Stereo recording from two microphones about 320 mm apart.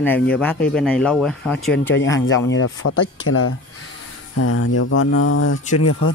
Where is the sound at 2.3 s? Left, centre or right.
Left.